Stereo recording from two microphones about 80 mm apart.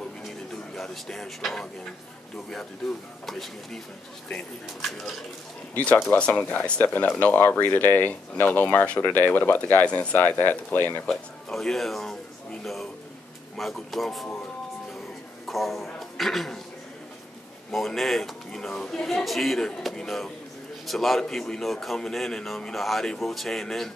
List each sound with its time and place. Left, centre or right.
0.7 s speech: centre
3.3 s a man's voice: centre
6.0 s speech: centre
11.1 s speech: centre
13.6 s a man's voice: centre
15.4 s a sound: centre
17.6 s a man's voice: centre